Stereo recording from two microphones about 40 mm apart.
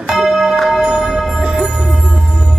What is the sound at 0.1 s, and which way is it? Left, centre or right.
Music, centre.